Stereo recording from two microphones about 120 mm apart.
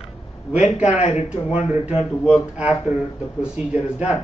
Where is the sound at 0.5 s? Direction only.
10° right (ahead or behind).